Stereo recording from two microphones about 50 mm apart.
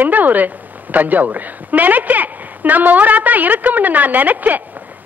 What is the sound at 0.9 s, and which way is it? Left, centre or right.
A woman's voice, right.